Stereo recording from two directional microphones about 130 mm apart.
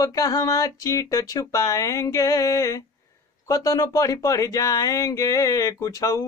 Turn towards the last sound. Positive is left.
turn(degrees=25)  # may be behind; listen again after turning